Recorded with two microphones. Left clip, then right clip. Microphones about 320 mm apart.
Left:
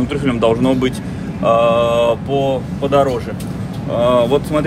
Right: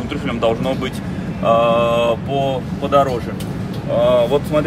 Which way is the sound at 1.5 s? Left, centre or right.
Left.